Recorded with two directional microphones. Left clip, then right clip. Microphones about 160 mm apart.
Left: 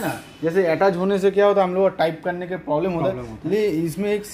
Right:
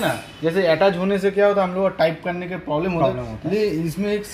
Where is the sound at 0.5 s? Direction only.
40° left (ahead or behind); by 2.9 s 20° left (ahead or behind).